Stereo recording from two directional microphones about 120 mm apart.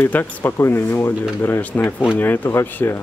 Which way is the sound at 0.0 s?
15° left (ahead or behind).